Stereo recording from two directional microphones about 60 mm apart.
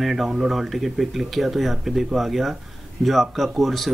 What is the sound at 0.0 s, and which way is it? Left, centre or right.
Speech, centre.